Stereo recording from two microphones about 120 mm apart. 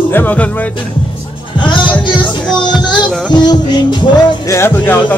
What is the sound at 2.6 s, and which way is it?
Music, 40° left (ahead or behind).